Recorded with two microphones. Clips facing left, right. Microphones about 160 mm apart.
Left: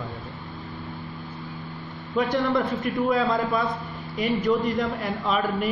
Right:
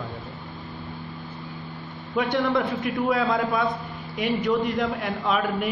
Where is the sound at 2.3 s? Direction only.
Centre (ahead or behind).